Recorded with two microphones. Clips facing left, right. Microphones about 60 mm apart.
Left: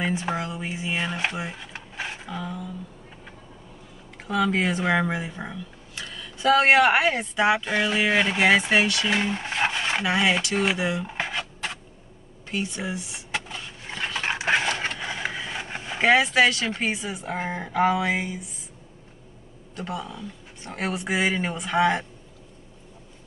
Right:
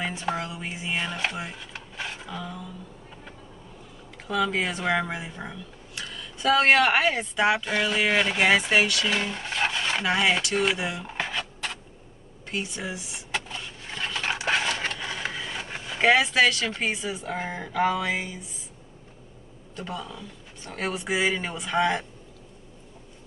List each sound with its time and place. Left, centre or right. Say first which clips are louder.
0.0 s speech: left 2 dB; centre
1.6 s rub: left 2 dB; centre
4.3 s speech: left 2 dB; centre
9.0 s cutlery: left 3 dB; centre
10.0 s speech: even; centre
11.1 s a sound: left 1 dB; centre
13.8 s a sound: left 2 dB; left
15.6 s vehicle: left 2 dB; left
16.0 s speech: left 1 dB; centre
19.8 s speech: left 3 dB; centre